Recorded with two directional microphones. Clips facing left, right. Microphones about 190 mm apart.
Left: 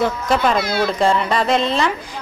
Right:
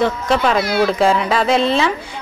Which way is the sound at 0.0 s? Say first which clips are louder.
Right 1 dB; centre (ahead or behind).